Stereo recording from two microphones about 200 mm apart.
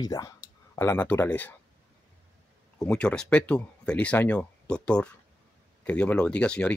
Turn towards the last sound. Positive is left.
turn(degrees=5)  # may be behind; listen again after turning